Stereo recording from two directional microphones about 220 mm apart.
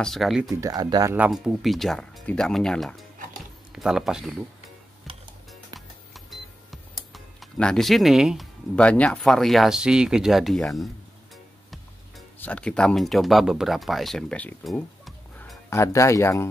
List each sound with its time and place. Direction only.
0.0 s speech: centre (ahead or behind)
0.6 s speech: 15° right (ahead or behind)
5.1 s music: 25° right (ahead or behind)
6.1 s speech: centre (ahead or behind)
12.4 s speech: 5° left (ahead or behind)
15.7 s speech: 15° left (ahead or behind)